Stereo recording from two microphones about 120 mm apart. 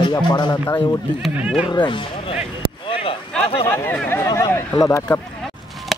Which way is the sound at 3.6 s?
20° left (ahead or behind).